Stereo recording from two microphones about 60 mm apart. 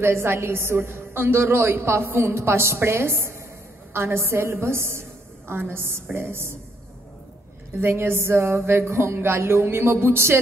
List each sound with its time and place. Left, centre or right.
0.0 s a woman's voice: right
7.8 s a woman's voice: right